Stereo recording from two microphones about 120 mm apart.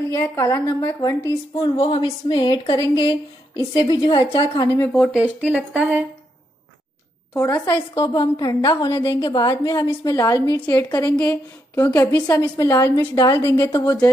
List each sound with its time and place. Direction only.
0.1 s a woman's voice: 25° left (ahead or behind)
1.6 s a woman's voice: 50° left (ahead or behind)
4.7 s speech: 15° left (ahead or behind)
5.8 s a woman's voice: 10° right (ahead or behind)
7.3 s a woman's voice: 25° left (ahead or behind)
11.8 s a woman's voice: 20° left (ahead or behind)